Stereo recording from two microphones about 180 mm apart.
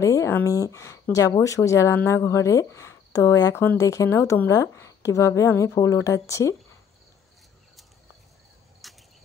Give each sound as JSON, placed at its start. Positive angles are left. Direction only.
{"t": 0.0, "sound": "speech", "side_deg": 15}
{"t": 8.8, "sound": "cricket", "side_deg": 0}